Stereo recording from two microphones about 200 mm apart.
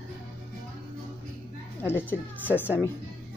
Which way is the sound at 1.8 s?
10° left (ahead or behind).